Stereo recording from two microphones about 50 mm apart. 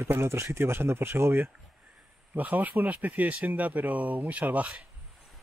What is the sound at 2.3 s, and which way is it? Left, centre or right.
Speech, right.